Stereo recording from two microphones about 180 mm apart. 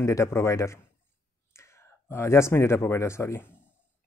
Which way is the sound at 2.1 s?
15° left (ahead or behind).